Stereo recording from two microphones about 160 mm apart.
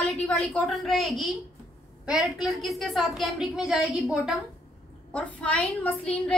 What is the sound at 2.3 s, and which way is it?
A woman's voice, centre (ahead or behind).